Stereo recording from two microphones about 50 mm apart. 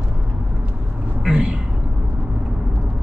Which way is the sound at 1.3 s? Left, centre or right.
Right.